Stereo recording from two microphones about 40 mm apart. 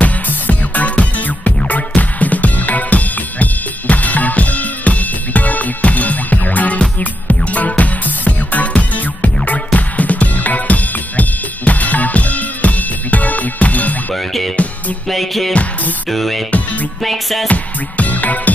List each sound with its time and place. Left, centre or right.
0.0 s music: left
14.1 s music: centre
17.5 s music: left